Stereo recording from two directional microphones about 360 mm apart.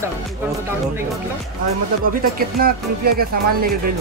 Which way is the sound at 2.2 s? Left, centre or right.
Right.